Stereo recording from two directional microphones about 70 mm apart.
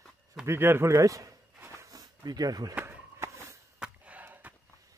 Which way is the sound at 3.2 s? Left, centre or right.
Right.